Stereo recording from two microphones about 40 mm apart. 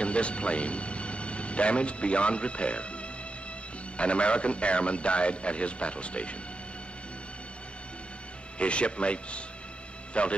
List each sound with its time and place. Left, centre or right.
0.0 s a man's voice: left
8.5 s a man's voice: left